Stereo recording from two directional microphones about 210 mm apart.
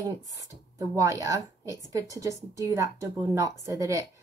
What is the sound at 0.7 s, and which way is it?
Speech, 15° right (ahead or behind).